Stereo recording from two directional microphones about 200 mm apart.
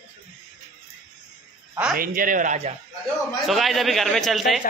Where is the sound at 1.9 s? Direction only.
45° right (ahead or behind).